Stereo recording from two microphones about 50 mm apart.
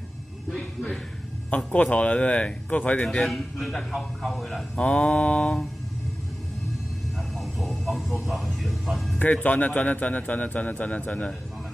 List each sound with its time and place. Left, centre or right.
0.5 s a sound: left
1.7 s speech: left
3.3 s a man's voice: centre
4.7 s speech: left
7.2 s a sound: centre
9.2 s a man's voice: left